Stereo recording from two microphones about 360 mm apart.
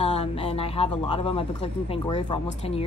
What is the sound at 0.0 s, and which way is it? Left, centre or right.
Speech, centre.